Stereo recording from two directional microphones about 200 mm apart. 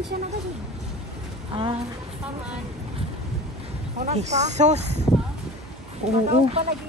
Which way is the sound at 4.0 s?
35° right (ahead or behind).